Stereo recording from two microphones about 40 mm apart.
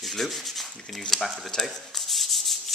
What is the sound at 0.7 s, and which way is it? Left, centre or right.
Speech, centre.